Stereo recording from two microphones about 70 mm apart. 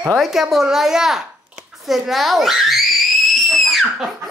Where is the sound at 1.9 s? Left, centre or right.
Centre.